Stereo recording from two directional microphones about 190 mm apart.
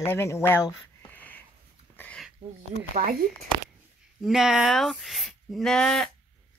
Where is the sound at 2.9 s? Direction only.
50° right (ahead or behind).